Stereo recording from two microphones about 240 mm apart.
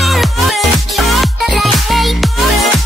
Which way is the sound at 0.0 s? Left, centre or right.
Centre.